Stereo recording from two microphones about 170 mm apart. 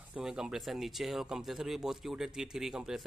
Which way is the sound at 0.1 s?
5° right (ahead or behind).